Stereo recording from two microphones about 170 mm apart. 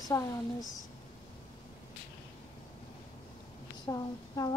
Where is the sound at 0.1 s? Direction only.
20° left (ahead or behind).